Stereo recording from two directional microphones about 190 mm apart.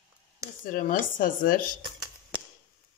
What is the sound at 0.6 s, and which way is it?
Speech, 45° left (ahead or behind).